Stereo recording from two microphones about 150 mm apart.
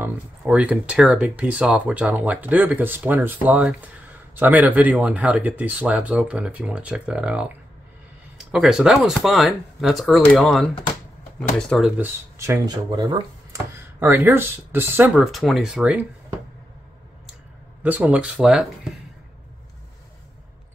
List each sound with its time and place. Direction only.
0.0 s speech: 10° right (ahead or behind)
12.0 s speech: 20° right (ahead or behind)
15.1 s speech: centre (ahead or behind)
17.8 s speech: 10° right (ahead or behind)